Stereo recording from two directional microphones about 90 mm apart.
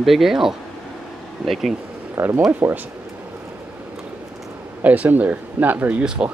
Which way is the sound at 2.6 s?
25° right (ahead or behind).